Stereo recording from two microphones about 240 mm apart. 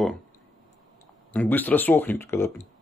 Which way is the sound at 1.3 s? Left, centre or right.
Centre.